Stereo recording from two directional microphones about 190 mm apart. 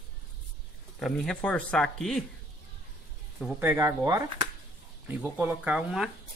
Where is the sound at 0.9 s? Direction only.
Centre (ahead or behind).